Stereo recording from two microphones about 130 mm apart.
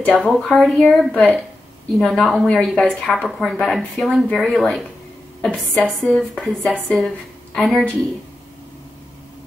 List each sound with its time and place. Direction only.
0.0 s speech: 5° left (ahead or behind)